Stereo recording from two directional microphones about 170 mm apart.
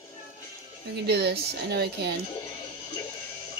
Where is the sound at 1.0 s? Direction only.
75° right (ahead or behind).